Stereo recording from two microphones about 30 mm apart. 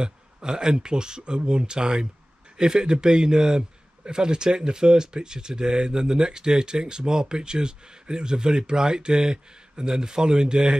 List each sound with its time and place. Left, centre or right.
0.0 s a man's voice: right